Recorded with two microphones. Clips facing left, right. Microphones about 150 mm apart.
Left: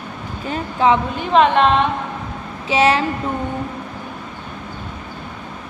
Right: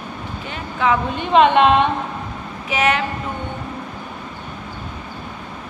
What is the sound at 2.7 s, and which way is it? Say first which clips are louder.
Mantra: left 4 dB; 30° left (ahead or behind).